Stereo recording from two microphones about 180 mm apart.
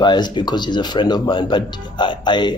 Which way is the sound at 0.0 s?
25° left (ahead or behind).